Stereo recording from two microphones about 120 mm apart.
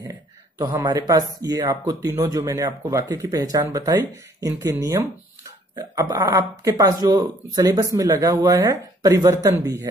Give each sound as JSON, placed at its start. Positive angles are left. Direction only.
{"t": 0.1, "sound": "speech", "side_deg": -30}